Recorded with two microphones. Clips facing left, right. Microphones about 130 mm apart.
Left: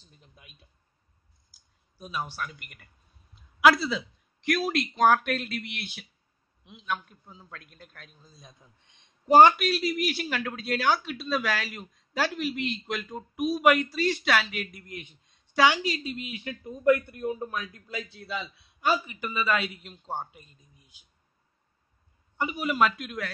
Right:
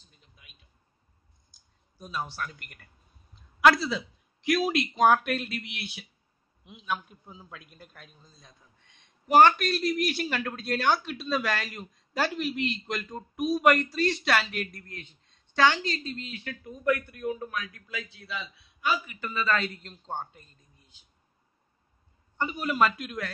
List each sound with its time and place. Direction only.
0.4 s a sound: 40° left (ahead or behind)
1.5 s a man's voice: 5° left (ahead or behind)
9.6 s a man's voice: 5° left (ahead or behind); by 19.1 s 35° left (ahead or behind)
19.1 s a man's voice: 15° left (ahead or behind)
22.4 s a man's voice: 5° left (ahead or behind)